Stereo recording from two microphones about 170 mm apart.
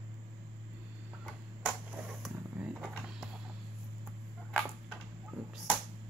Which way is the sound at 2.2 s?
5° right (ahead or behind).